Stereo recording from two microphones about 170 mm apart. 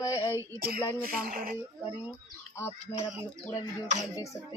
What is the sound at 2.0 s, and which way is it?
Speech, 15° left (ahead or behind).